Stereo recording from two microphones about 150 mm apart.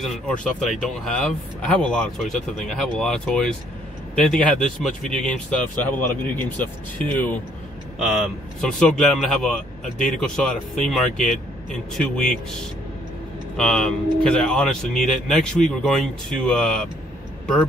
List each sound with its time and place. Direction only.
0.0 s speech: 5° left (ahead or behind)
8.5 s speech: 5° left (ahead or behind)
11.1 s speech: 55° left (ahead or behind)
11.9 s speech: 5° left (ahead or behind)
13.6 s speech: 5° left (ahead or behind)